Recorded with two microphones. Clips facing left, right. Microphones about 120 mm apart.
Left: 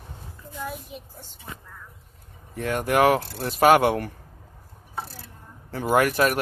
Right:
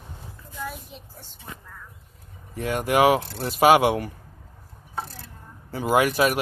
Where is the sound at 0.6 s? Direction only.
10° left (ahead or behind).